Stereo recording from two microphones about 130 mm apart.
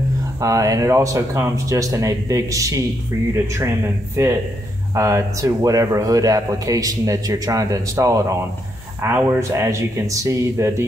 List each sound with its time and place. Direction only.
0.4 s speech: 25° right (ahead or behind)